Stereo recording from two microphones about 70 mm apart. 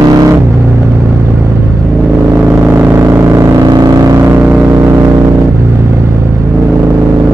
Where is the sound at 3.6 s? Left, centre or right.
Right.